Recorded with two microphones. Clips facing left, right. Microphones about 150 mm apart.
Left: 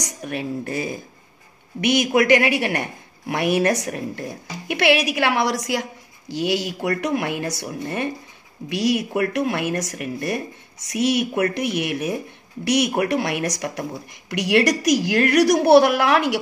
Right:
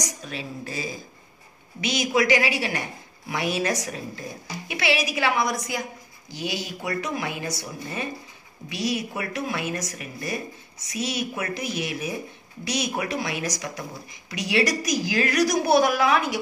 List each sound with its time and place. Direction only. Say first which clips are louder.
0.0 s a woman's voice: left 5 dB; 60° left (ahead or behind)